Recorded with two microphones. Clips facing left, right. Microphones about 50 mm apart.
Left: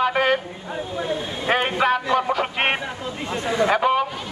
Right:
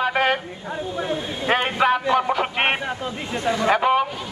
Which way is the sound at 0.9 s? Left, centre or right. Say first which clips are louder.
Left 1 dB; centre.